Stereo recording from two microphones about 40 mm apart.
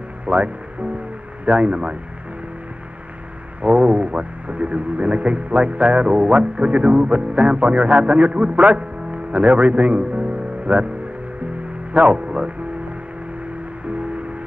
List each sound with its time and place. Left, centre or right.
0.2 s music: right
1.4 s speech: right
3.6 s speech: right
11.9 s speech: right
13.8 s music: right